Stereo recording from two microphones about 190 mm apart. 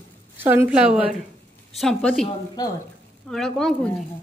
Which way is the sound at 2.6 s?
20° left (ahead or behind).